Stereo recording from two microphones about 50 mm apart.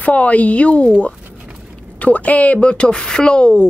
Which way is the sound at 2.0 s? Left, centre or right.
Left.